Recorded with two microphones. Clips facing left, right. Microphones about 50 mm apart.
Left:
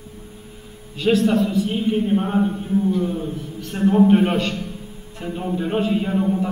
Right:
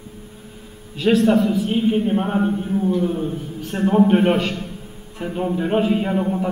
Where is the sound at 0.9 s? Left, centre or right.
Centre.